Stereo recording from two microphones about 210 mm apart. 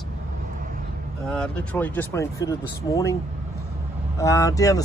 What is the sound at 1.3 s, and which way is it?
Speech, 5° left (ahead or behind).